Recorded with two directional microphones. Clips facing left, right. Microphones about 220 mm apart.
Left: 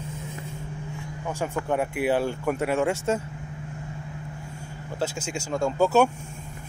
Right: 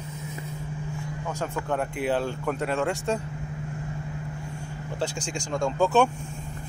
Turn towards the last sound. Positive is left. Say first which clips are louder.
# left 1 dB
turn(degrees=5)  # may be behind; listen again after turning